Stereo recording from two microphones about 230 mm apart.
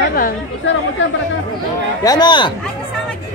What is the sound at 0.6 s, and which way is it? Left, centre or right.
Speech, left.